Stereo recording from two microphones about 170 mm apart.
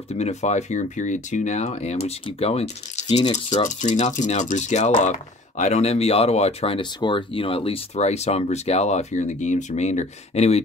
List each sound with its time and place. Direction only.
0.1 s speech: 40° left (ahead or behind)